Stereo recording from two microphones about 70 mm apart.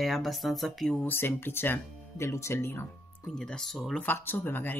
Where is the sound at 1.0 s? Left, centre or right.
Left.